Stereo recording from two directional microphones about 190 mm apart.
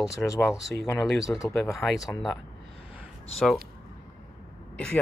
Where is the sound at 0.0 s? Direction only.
15° left (ahead or behind); by 2.1 s centre (ahead or behind).